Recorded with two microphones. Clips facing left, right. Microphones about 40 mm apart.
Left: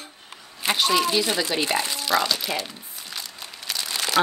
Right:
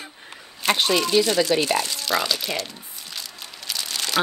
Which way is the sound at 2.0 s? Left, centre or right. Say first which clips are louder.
Left 1 dB; centre.